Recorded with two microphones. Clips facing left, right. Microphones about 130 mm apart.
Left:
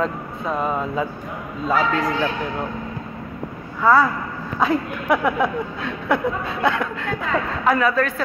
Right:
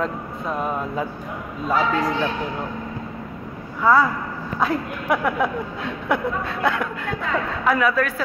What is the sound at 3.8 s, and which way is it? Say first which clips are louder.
Speech: left 1 dB; 5° left (ahead or behind).